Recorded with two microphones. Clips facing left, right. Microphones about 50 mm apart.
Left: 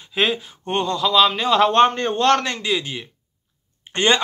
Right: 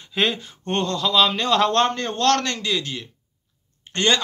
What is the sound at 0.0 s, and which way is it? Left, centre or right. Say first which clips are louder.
Speech: left 2 dB; centre.